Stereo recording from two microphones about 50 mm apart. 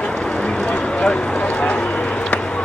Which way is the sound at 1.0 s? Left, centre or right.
Left.